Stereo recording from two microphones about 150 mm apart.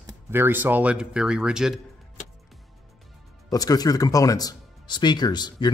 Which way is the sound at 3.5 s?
25° left (ahead or behind).